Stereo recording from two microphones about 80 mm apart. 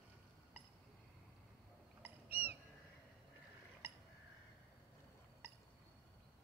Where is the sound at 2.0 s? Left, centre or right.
Right.